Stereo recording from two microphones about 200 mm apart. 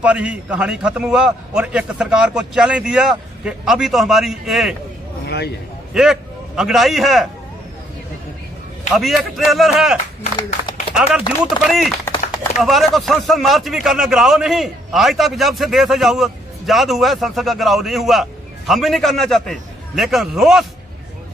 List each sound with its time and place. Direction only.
0.0 s speech: 5° right (ahead or behind)
5.2 s a sound: 55° left (ahead or behind)
5.9 s a man's voice: centre (ahead or behind)
8.9 s speech: centre (ahead or behind)
11.0 s speech: 5° right (ahead or behind)